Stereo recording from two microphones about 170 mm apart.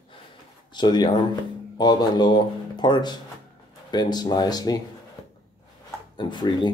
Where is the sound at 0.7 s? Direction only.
25° left (ahead or behind).